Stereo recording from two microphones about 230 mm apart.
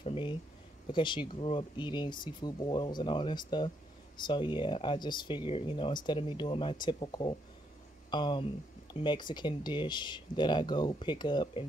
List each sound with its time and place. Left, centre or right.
0.0 s speech: left